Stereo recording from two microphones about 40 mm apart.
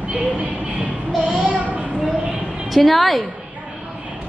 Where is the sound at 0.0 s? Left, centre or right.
Right.